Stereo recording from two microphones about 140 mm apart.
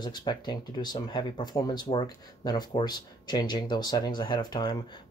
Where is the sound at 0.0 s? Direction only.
30° left (ahead or behind).